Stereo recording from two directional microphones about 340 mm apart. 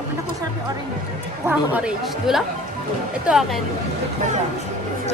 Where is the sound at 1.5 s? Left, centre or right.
Centre.